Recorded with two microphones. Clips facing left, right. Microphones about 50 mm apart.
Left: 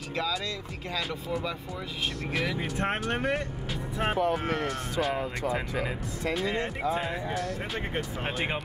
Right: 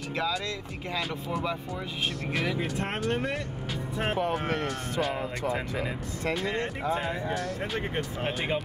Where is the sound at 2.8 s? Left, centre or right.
Left.